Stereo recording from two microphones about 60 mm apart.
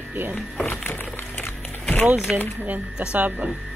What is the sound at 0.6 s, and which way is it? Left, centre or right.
Speech, left.